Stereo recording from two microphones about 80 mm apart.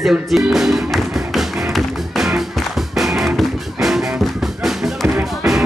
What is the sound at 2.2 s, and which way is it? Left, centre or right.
Music, centre.